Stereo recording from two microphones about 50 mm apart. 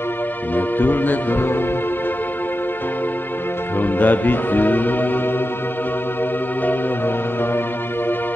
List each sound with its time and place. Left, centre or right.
0.6 s music: left
3.8 s music: left